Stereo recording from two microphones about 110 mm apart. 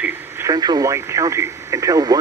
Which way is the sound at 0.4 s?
35° right (ahead or behind).